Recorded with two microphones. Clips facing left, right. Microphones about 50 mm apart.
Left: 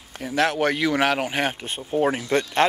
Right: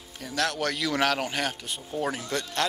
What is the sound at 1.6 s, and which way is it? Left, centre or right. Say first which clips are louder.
Speech: left 8 dB; left.